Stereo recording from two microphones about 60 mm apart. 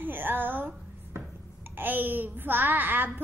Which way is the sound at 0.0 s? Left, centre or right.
Right.